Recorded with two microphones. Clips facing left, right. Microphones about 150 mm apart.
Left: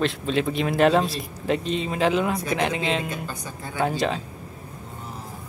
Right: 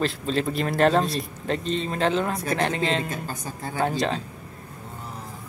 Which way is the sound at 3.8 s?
Centre (ahead or behind).